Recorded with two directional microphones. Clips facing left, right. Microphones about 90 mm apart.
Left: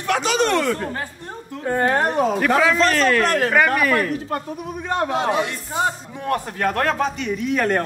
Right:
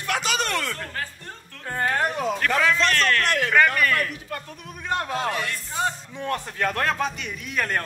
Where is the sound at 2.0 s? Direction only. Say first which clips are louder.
Left 6 dB; 40° left (ahead or behind).